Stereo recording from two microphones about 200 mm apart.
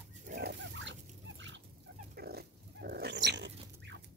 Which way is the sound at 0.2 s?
40° right (ahead or behind).